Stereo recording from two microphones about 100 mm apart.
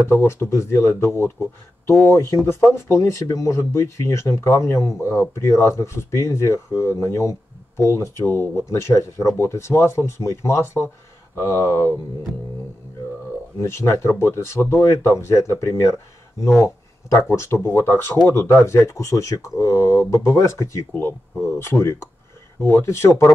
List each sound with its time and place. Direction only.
0.1 s speech: 25° left (ahead or behind)
13.6 s speech: 25° left (ahead or behind)